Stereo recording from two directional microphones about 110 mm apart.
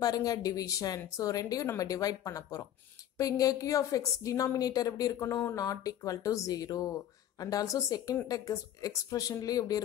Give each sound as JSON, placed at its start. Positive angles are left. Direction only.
{"t": 0.0, "sound": "speech", "side_deg": 35}